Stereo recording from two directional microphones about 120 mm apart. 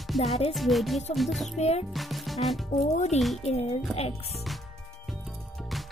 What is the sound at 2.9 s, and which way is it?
Speech, 75° left (ahead or behind).